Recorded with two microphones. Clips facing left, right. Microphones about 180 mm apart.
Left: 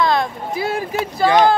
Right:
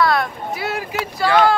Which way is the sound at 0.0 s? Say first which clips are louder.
Even; 25° left (ahead or behind).